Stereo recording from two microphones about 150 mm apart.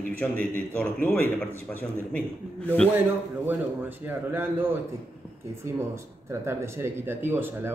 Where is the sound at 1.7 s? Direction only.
10° left (ahead or behind).